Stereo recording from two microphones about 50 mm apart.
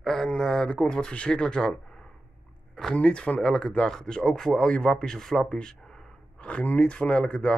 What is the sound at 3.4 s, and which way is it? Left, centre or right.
Speech, centre.